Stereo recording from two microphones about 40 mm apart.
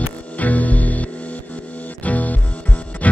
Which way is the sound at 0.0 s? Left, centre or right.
Left.